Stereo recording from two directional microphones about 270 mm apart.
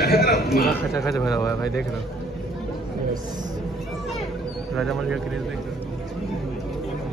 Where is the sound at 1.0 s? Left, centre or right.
Centre.